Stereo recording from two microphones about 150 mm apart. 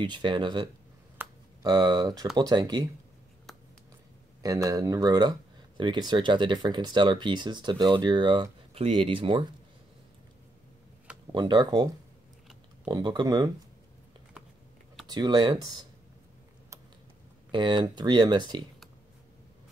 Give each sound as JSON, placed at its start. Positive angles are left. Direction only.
{"t": 0.0, "sound": "speech", "side_deg": -30}
{"t": 1.2, "sound": "a sound", "side_deg": -15}
{"t": 1.7, "sound": "speech", "side_deg": -30}
{"t": 4.4, "sound": "speech", "side_deg": -25}
{"t": 11.3, "sound": "speech", "side_deg": -30}
{"t": 15.0, "sound": "speech", "side_deg": -30}
{"t": 17.5, "sound": "speech", "side_deg": -30}